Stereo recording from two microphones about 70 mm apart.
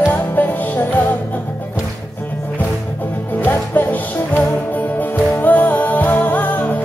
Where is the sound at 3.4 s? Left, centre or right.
Left.